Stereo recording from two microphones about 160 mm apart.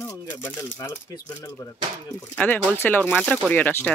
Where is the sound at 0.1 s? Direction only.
20° left (ahead or behind).